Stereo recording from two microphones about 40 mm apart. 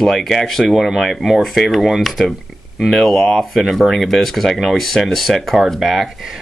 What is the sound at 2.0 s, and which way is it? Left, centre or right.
Speech, centre.